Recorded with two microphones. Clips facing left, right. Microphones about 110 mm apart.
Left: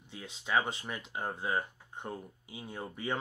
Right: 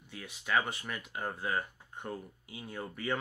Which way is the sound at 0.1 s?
20° left (ahead or behind).